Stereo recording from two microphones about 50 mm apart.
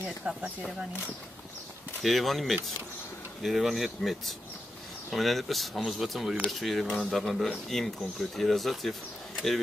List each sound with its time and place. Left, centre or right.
0.3 s speech: centre
2.0 s speech: centre